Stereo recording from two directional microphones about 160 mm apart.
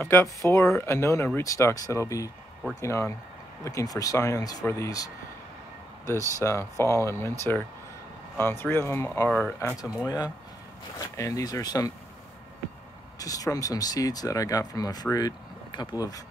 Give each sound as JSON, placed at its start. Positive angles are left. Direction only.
{"t": 0.0, "sound": "speech", "side_deg": 15}
{"t": 13.2, "sound": "speech", "side_deg": 20}